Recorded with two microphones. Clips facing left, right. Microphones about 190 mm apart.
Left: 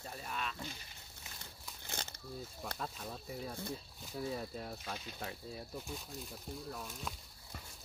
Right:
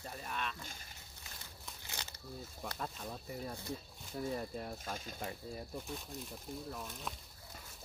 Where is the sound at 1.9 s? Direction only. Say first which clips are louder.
Left 4 dB; 50° left (ahead or behind).